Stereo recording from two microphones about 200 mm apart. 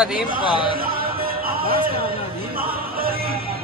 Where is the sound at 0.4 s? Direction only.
25° left (ahead or behind).